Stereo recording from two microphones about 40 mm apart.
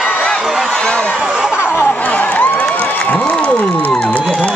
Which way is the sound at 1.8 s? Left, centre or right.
Left.